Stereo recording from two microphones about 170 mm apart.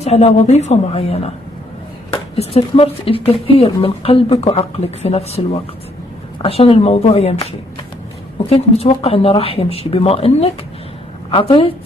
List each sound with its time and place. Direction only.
0.0 s speech: 40° left (ahead or behind)
2.3 s speech: 35° left (ahead or behind)
6.4 s speech: 35° left (ahead or behind)
8.5 s a woman's voice: 35° left (ahead or behind)